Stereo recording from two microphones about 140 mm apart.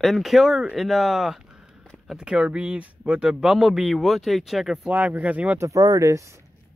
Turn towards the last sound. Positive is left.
turn(degrees=-20)  # may be behind; listen again after turning